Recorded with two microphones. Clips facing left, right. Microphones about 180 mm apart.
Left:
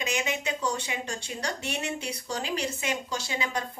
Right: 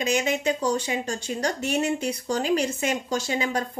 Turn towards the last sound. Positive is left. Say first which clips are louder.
# right 6 dB
turn(degrees=-45)  # may be behind; listen again after turning